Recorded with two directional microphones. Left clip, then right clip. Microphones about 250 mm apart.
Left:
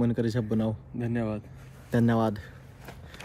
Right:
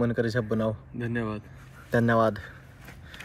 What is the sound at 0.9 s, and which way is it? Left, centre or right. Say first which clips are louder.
Speech: even; centre.